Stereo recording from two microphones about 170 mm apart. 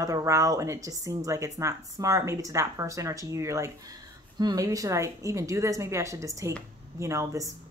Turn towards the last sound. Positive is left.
turn(degrees=-15)  # may be behind; listen again after turning